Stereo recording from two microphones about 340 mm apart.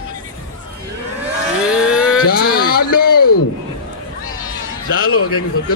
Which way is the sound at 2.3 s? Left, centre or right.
Left.